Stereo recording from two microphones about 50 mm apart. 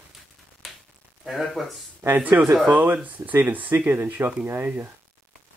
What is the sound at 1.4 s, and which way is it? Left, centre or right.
Speech, centre.